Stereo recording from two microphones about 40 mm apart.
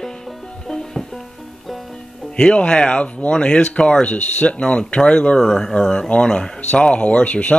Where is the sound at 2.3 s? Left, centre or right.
Left.